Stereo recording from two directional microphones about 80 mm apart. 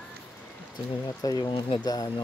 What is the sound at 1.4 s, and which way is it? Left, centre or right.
Speech, left.